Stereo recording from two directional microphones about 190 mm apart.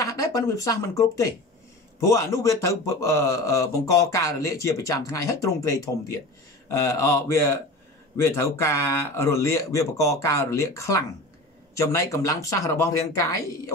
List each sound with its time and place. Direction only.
0.0 s speech: 15° left (ahead or behind)
6.8 s speech: 15° left (ahead or behind)